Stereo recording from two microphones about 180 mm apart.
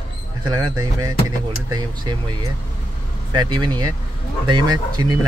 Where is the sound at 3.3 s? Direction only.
25° right (ahead or behind).